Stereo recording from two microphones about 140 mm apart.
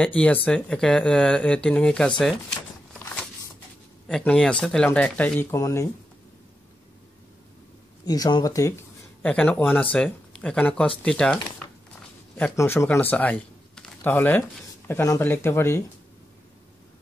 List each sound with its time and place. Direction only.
0.0 s speech: 10° left (ahead or behind)
5.5 s speech: 20° left (ahead or behind)
8.0 s speech: 30° left (ahead or behind)
9.2 s speech: 10° left (ahead or behind)